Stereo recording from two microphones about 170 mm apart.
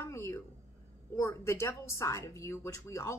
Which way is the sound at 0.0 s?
15° left (ahead or behind).